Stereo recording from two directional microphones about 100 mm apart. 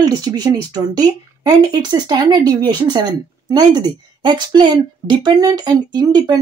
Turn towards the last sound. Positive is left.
turn(degrees=-40)  # may be behind; listen again after turning